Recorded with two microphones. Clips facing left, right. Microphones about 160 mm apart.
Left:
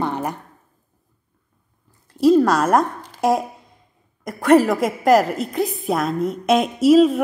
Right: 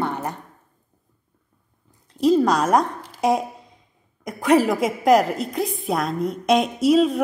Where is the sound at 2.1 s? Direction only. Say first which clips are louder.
Left 3 dB; 5° left (ahead or behind).